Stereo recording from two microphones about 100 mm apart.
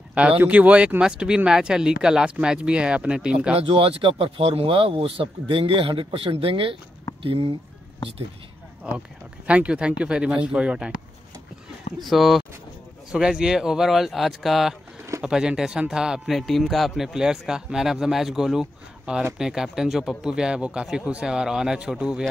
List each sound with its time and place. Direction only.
0.1 s speech: 10° right (ahead or behind)
3.5 s speech: 80° right; by 6.8 s 60° right (ahead or behind)
7.2 s speech: 75° right (ahead or behind)
8.8 s speech: 10° right (ahead or behind)
12.0 s a man's voice: centre (ahead or behind)